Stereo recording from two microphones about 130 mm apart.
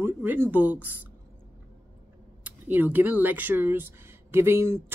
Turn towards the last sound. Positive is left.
turn(degrees=-20)  # may be behind; listen again after turning